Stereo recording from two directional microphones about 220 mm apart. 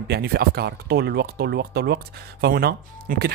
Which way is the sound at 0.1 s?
45° right (ahead or behind).